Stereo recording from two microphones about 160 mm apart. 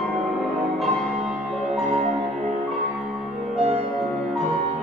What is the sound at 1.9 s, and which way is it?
Music, 45° right (ahead or behind).